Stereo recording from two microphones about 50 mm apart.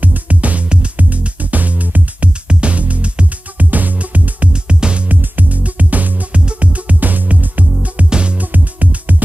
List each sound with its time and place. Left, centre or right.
0.0 s music: right
5.0 s music: right
8.5 s music: right